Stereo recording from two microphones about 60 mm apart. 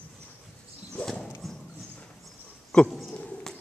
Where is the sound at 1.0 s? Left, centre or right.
Centre.